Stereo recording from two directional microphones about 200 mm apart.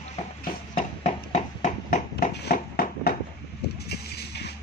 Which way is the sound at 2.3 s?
50° left (ahead or behind).